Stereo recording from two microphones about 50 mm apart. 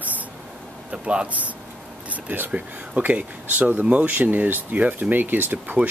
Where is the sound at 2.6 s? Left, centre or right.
Right.